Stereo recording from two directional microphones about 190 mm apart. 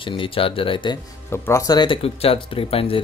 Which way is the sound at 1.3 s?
15° left (ahead or behind).